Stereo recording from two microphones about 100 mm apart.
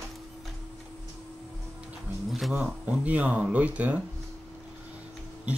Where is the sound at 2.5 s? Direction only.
15° right (ahead or behind).